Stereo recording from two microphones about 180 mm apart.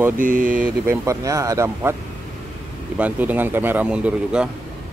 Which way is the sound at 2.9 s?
10° right (ahead or behind).